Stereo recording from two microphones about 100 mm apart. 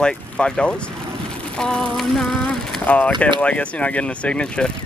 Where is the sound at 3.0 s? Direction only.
10° left (ahead or behind).